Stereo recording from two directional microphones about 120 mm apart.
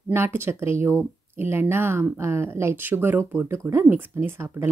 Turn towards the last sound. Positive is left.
turn(degrees=-20)  # may be behind; listen again after turning